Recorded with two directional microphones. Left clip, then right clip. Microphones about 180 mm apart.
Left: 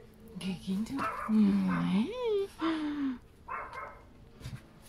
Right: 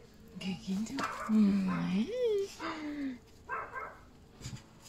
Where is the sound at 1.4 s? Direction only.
20° left (ahead or behind).